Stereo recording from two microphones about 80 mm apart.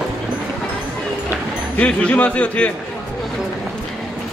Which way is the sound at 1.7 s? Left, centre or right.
Centre.